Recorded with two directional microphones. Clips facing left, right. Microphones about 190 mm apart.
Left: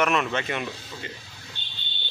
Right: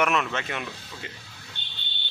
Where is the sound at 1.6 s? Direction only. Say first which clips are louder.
Even; 60° right (ahead or behind).